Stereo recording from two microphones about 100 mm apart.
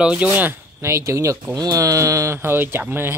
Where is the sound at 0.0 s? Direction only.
15° right (ahead or behind).